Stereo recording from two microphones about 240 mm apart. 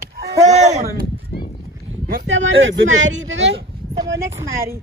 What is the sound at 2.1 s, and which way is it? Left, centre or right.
Speech, right.